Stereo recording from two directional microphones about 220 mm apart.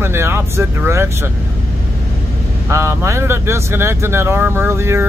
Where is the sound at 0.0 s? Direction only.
10° right (ahead or behind).